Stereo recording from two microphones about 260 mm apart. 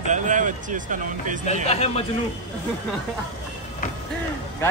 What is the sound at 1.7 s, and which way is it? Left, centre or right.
Speech, left.